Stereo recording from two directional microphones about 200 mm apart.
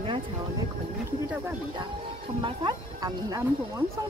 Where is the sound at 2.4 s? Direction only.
20° right (ahead or behind).